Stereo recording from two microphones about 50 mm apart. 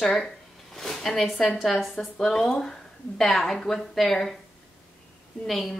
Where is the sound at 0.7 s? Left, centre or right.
Centre.